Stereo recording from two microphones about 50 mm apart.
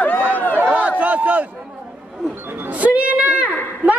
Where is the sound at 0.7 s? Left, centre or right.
Right.